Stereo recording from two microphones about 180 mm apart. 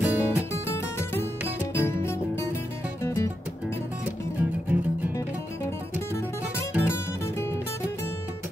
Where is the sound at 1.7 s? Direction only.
15° left (ahead or behind).